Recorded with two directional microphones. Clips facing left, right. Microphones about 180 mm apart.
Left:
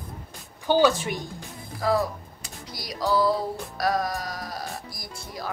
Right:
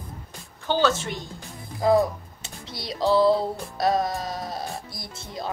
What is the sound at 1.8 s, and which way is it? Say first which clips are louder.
Music: right 4 dB; 20° right (ahead or behind).